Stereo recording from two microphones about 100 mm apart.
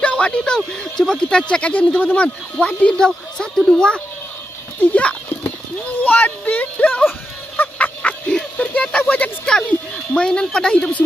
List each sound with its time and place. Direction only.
0.0 s speech: 10° left (ahead or behind)
4.8 s clip-clop: 10° left (ahead or behind)
6.0 s speech: 15° left (ahead or behind)